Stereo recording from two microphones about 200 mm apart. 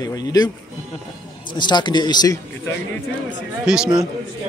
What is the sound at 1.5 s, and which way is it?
A man's voice, 20° left (ahead or behind).